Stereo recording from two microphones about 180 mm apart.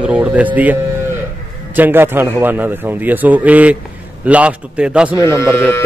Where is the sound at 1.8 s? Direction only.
10° right (ahead or behind).